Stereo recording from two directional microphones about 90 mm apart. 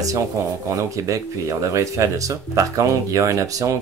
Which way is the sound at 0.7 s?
40° right (ahead or behind).